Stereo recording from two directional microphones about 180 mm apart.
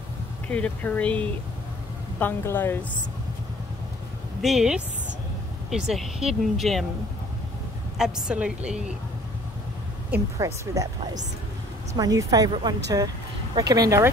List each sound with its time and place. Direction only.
0.5 s speech: 10° left (ahead or behind)
4.4 s speech: centre (ahead or behind)
8.0 s speech: 5° right (ahead or behind)
10.1 s speech: 15° right (ahead or behind)